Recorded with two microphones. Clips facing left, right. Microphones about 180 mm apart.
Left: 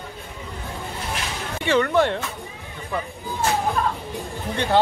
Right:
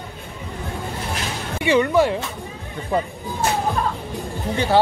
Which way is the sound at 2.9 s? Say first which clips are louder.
Right 6 dB; 35° right (ahead or behind).